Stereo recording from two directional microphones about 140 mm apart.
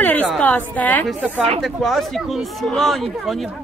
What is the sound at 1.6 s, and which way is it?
Speech, centre (ahead or behind).